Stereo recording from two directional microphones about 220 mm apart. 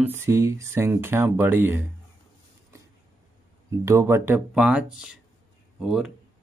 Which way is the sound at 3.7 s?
15° right (ahead or behind).